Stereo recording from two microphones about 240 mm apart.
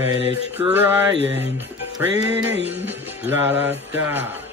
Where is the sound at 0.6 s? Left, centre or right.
Centre.